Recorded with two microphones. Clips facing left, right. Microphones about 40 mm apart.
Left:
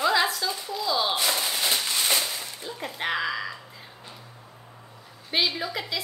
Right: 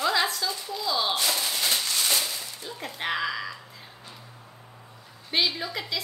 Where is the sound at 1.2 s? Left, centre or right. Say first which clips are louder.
Left 1 dB; centre.